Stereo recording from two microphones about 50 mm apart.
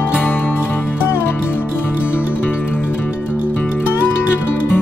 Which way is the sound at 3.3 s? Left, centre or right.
Right.